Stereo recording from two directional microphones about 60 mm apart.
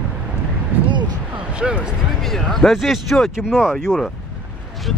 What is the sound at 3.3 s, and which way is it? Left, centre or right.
Speech, centre.